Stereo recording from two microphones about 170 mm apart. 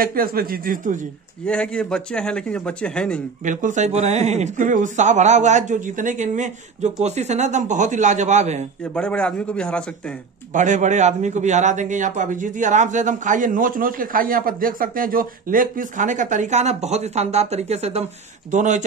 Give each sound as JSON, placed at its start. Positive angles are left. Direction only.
{"t": 0.0, "sound": "speech", "side_deg": -60}
{"t": 1.4, "sound": "speech", "side_deg": 5}
{"t": 3.4, "sound": "a man's voice", "side_deg": -45}
{"t": 8.9, "sound": "speech", "side_deg": 5}
{"t": 10.5, "sound": "a man's voice", "side_deg": -45}